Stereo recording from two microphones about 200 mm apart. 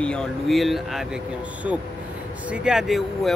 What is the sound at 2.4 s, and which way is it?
Speech, 5° right (ahead or behind).